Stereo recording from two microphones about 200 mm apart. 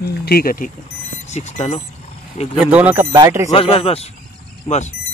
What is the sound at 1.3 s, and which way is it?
Speech, 35° left (ahead or behind).